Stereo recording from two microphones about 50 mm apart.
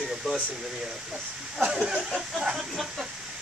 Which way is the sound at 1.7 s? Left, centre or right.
Centre.